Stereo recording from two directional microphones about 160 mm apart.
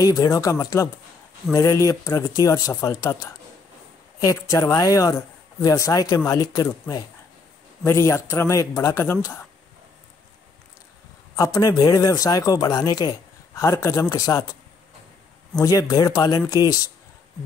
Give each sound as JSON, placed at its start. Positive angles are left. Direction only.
{"t": 0.0, "sound": "a man's voice", "side_deg": 20}
{"t": 4.2, "sound": "a man's voice", "side_deg": 20}
{"t": 11.3, "sound": "a man's voice", "side_deg": 20}
{"t": 15.6, "sound": "a man's voice", "side_deg": 20}